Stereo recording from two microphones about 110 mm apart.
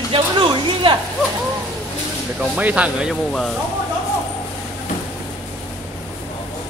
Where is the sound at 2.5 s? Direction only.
10° right (ahead or behind).